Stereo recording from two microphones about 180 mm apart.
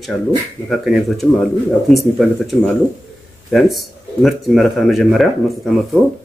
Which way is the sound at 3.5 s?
Centre (ahead or behind).